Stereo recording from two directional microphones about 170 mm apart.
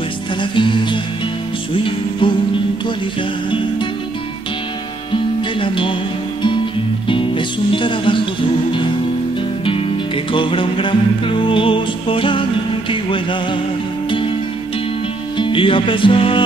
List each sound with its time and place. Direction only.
0.4 s music: 30° left (ahead or behind)
5.1 s music: 30° left (ahead or behind)
7.1 s music: 30° left (ahead or behind)
9.7 s music: 30° left (ahead or behind)
15.3 s music: 30° left (ahead or behind)